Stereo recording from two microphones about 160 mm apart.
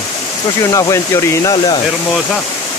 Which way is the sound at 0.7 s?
20° left (ahead or behind).